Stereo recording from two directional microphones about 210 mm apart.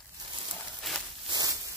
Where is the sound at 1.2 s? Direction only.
15° right (ahead or behind).